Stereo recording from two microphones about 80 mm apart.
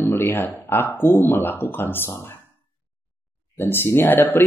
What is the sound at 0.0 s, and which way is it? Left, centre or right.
Speech, left.